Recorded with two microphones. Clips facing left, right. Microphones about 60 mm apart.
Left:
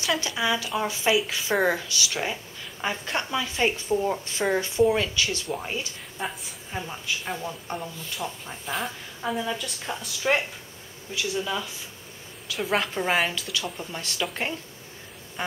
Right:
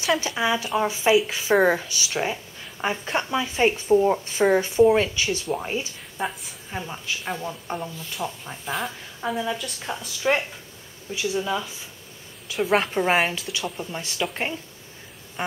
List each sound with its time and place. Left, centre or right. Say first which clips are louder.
0.2 s speech: right 2 dB; right
2.0 s speech: right 4 dB; centre
2.8 s speech: right 3 dB; centre
6.2 s speech: right 4 dB; centre
11.1 s a woman's voice: right 3 dB; centre